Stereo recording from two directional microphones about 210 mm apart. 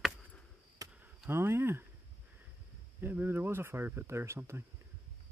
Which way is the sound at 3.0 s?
10° right (ahead or behind).